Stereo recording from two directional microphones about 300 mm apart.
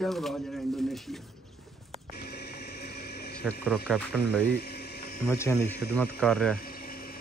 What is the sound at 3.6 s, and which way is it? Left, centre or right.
Speech, centre.